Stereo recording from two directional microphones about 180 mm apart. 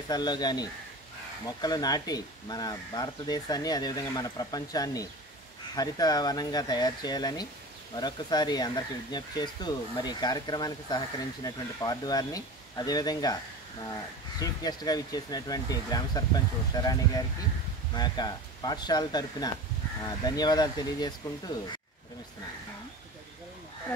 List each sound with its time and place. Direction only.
0.1 s speech: 25° left (ahead or behind)
14.4 s speech: 20° left (ahead or behind)